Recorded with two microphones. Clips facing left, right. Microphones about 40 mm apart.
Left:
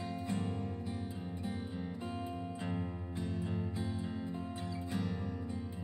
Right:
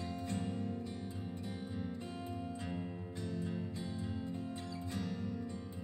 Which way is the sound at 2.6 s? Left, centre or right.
Centre.